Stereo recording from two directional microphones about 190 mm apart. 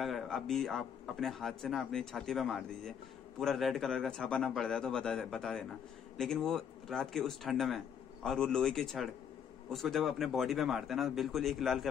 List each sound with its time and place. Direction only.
0.0 s speech: centre (ahead or behind)